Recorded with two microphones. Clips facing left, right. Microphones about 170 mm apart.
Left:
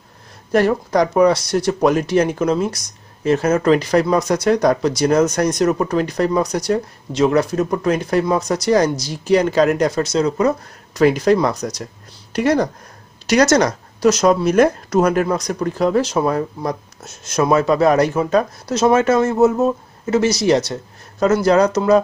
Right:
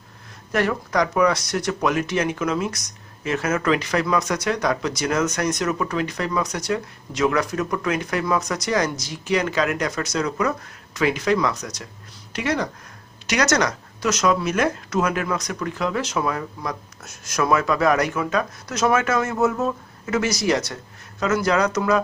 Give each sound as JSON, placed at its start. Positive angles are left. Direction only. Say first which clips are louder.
{"t": 0.5, "sound": "speech", "louder": "left 7 dB", "side_deg": 35}